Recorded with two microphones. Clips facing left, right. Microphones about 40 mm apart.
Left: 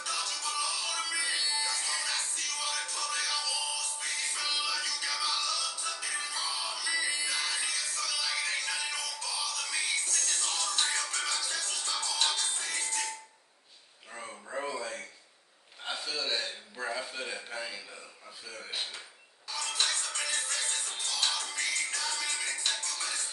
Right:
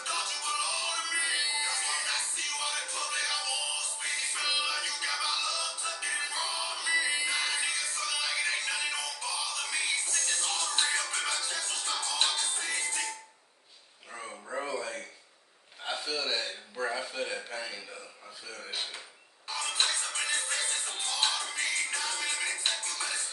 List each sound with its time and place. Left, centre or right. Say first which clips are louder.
0.0 s music: right 1 dB; right
11.2 s music: right 1 dB; right
14.1 s a sound: right 1 dB; centre
18.5 s dishes: even; centre
19.5 s music: right 1 dB; right